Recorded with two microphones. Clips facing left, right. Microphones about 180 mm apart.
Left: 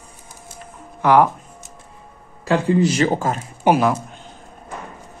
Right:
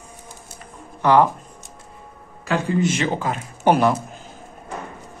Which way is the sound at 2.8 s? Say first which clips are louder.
Left 4 dB; 40° left (ahead or behind).